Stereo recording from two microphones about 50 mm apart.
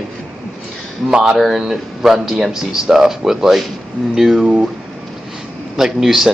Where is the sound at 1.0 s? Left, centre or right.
Centre.